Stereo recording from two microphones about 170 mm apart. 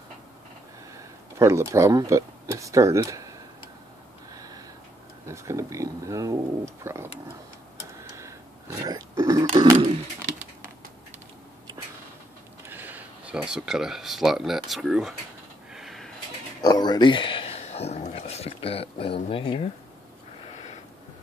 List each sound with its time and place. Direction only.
0.9 s speech: 15° right (ahead or behind)
4.3 s a sound: 20° right (ahead or behind)
5.2 s speech: 15° right (ahead or behind)
8.0 s burping: 15° right (ahead or behind)
12.6 s speech: 10° right (ahead or behind)
15.7 s a sound: centre (ahead or behind)
16.6 s speech: 25° left (ahead or behind)